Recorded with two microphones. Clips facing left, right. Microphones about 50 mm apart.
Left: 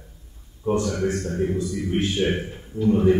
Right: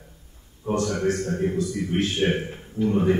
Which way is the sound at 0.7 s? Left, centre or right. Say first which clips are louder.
Left 3 dB; left.